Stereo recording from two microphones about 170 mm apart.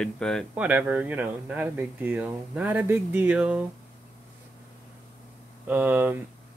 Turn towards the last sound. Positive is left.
turn(degrees=-10)  # may be behind; listen again after turning